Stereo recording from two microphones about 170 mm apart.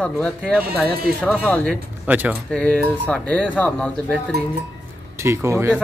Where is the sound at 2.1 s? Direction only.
10° right (ahead or behind).